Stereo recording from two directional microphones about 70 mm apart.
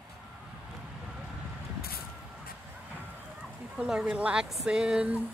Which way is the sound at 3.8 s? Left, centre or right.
Centre.